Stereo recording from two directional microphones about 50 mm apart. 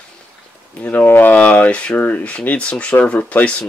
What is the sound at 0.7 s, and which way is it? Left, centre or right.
Speech, left.